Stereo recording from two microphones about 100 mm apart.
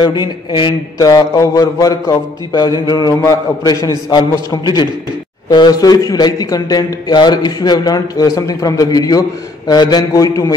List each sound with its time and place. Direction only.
0.0 s a man's voice: 45° left (ahead or behind)